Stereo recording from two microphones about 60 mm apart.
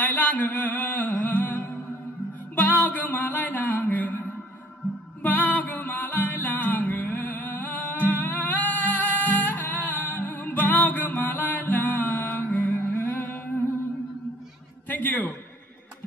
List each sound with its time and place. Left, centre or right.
0.0 s music: left
5.2 s music: left
14.9 s a sound: left